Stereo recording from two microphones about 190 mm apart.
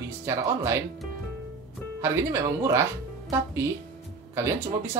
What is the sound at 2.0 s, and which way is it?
Speech, 15° right (ahead or behind).